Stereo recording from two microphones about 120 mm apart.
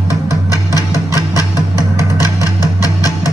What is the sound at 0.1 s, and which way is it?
Music, 30° left (ahead or behind).